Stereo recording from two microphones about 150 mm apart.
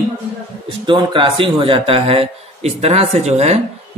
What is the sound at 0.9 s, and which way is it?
A man's voice, 35° right (ahead or behind).